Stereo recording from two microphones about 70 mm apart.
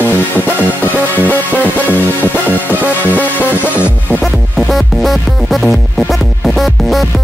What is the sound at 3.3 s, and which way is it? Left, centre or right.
Music, right.